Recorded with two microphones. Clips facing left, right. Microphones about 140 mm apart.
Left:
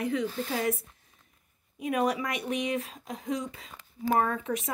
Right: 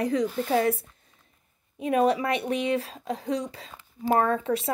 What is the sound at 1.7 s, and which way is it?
A woman's voice, 30° right (ahead or behind).